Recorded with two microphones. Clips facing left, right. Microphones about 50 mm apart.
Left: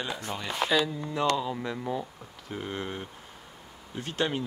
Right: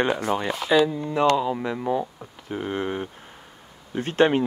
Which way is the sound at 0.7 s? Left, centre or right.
Right.